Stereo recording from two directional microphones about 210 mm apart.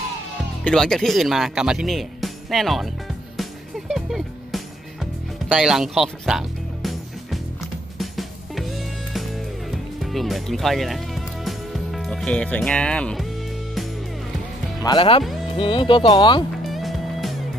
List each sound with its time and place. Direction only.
0.7 s speech: centre (ahead or behind)
3.3 s music: centre (ahead or behind)
10.1 s speech: centre (ahead or behind)
14.8 s speech: 20° left (ahead or behind)
16.6 s music: centre (ahead or behind)